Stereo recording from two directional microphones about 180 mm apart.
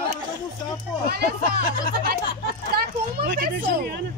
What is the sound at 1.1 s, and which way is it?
Speech, 60° right (ahead or behind).